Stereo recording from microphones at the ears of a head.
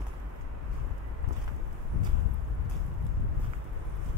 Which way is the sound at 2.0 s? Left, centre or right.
Left.